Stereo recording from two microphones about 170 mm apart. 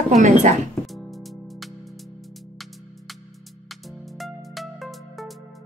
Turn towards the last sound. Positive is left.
turn(degrees=0)  # may be behind; listen again after turning